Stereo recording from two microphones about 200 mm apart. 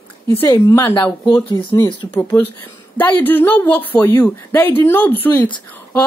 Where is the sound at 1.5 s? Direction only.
25° left (ahead or behind).